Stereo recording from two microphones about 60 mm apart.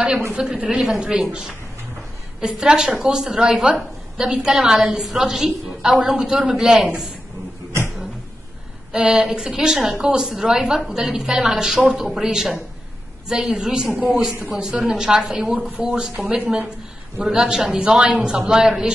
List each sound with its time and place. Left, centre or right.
0.3 s a woman's voice: centre
8.9 s a woman's voice: centre
17.2 s a woman's voice: centre